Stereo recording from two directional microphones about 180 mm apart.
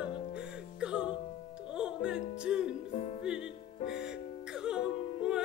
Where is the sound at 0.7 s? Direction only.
5° right (ahead or behind).